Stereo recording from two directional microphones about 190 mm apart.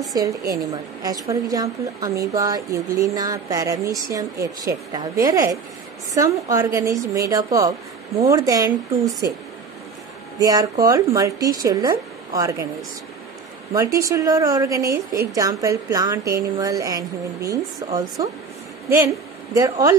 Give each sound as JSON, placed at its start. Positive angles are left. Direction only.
{"t": 0.1, "sound": "a woman's voice", "side_deg": -20}
{"t": 10.4, "sound": "a woman's voice", "side_deg": -20}
{"t": 13.7, "sound": "a woman's voice", "side_deg": -15}
{"t": 14.9, "sound": "a woman's voice", "side_deg": -50}
{"t": 15.3, "sound": "a woman's voice", "side_deg": -15}